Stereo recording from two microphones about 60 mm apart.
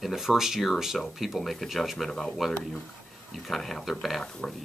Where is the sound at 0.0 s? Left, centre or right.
Centre.